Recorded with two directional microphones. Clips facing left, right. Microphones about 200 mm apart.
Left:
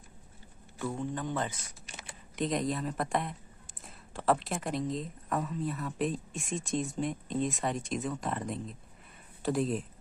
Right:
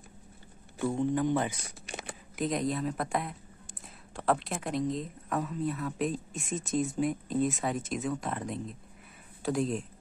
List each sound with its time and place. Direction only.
0.8 s a man's voice: 15° right (ahead or behind)
1.9 s a sound: 60° right (ahead or behind)
2.3 s a woman's voice: centre (ahead or behind)